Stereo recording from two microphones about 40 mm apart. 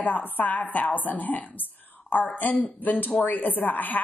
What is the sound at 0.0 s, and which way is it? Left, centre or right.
A woman's voice, left.